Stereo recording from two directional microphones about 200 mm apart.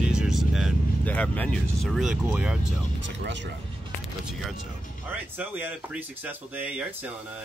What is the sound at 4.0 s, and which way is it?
Vehicle, centre (ahead or behind).